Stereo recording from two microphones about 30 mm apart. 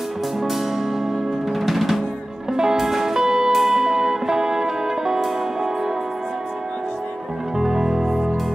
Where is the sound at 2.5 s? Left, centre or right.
Centre.